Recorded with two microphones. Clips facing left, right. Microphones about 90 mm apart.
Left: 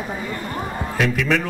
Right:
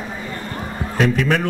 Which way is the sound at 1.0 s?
40° right (ahead or behind).